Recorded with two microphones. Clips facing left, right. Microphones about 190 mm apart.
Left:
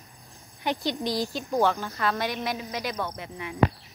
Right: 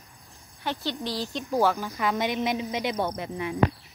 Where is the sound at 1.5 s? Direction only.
10° right (ahead or behind); by 3.6 s 35° right (ahead or behind).